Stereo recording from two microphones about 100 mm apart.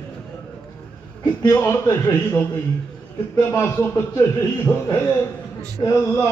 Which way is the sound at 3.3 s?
30° left (ahead or behind).